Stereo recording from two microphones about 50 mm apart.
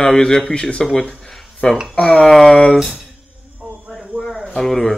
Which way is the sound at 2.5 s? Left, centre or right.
Left.